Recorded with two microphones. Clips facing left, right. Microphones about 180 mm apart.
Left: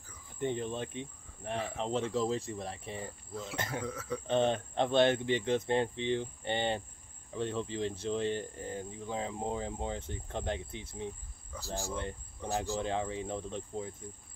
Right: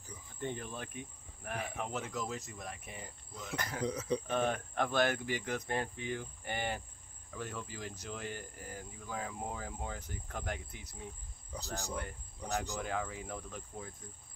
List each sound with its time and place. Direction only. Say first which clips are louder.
0.4 s cricket: left 7 dB; 20° left (ahead or behind)
1.8 s speech: left 10 dB; 30° left (ahead or behind)
3.8 s speech: right 3 dB; 20° right (ahead or behind)
4.3 s speech: left 5 dB; 25° left (ahead or behind)
11.5 s speech: left 3 dB; 20° right (ahead or behind)
11.9 s speech: left 3 dB; 25° left (ahead or behind)